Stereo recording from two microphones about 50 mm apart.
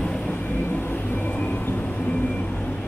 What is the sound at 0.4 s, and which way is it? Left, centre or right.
Vehicle, left.